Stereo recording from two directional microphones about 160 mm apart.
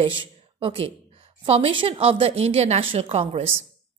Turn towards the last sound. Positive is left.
turn(degrees=-40)  # may be behind; listen again after turning